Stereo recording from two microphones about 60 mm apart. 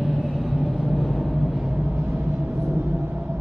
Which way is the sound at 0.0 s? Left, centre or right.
Centre.